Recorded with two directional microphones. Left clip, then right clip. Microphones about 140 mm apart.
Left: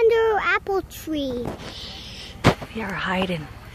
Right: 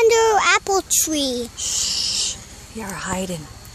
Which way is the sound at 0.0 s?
30° right (ahead or behind).